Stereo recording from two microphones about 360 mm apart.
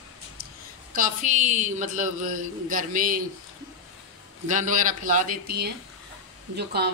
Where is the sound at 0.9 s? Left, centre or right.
Right.